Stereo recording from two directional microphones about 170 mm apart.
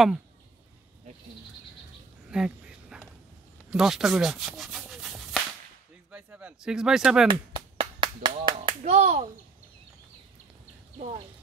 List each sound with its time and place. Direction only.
2.3 s dog: 5° right (ahead or behind)
3.7 s a sound: centre (ahead or behind)
6.1 s speech: 5° right (ahead or behind)
7.2 s clapping: 30° right (ahead or behind)
8.9 s a child's voice: 40° right (ahead or behind)